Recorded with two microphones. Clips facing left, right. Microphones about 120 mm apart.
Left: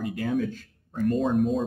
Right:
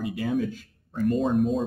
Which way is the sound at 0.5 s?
5° right (ahead or behind).